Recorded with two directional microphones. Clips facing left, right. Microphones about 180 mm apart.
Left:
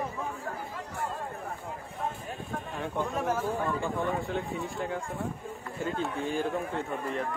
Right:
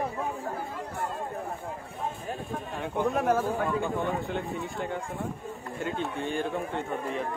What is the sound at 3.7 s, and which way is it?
Speech, centre (ahead or behind).